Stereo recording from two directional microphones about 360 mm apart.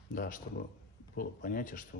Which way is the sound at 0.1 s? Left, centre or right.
Left.